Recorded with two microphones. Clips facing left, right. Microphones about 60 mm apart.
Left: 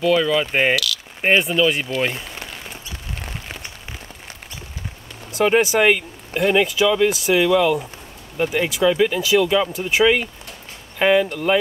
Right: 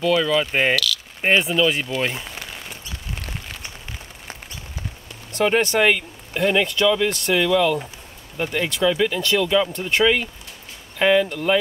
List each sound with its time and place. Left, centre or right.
0.0 s speech: centre
5.3 s speech: centre